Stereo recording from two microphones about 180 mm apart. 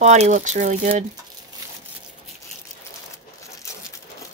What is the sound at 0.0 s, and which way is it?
Speech, 40° right (ahead or behind).